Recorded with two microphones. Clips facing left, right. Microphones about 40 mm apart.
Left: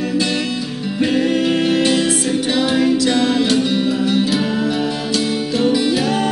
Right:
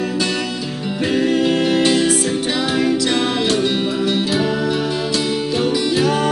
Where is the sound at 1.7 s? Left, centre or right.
Right.